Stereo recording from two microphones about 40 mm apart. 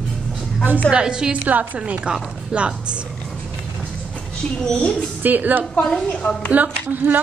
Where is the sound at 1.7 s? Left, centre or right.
Right.